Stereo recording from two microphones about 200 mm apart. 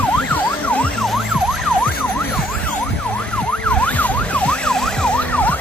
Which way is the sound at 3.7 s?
5° left (ahead or behind).